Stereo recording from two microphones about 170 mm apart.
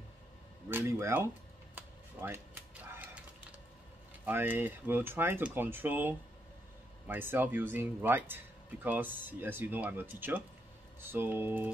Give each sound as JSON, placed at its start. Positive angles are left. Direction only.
{"t": 0.7, "sound": "speech", "side_deg": -15}
{"t": 1.8, "sound": "mechanisms", "side_deg": -15}
{"t": 4.3, "sound": "speech", "side_deg": -10}